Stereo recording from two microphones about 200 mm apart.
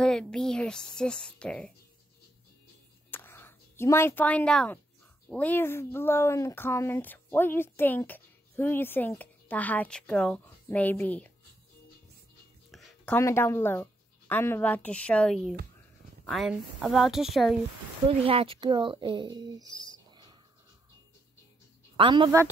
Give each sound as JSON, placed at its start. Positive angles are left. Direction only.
{"t": 0.0, "sound": "a woman's voice", "side_deg": 5}
{"t": 3.1, "sound": "a sound", "side_deg": 10}
{"t": 5.3, "sound": "speech", "side_deg": 10}
{"t": 12.7, "sound": "a woman's voice", "side_deg": 5}
{"t": 18.0, "sound": "speech", "side_deg": -30}
{"t": 21.9, "sound": "speech", "side_deg": -25}